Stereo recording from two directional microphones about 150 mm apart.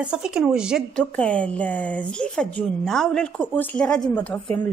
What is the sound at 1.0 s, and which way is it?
Speech, 10° left (ahead or behind).